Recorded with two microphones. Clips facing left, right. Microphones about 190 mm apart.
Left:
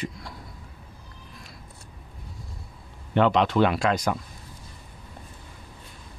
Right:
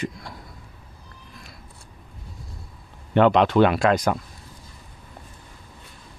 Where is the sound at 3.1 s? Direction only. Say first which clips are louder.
Right 4 dB; 60° right (ahead or behind).